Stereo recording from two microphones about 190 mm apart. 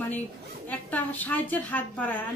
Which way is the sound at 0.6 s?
10° left (ahead or behind).